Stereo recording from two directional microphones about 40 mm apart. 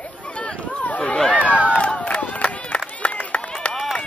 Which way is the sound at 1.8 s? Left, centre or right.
Left.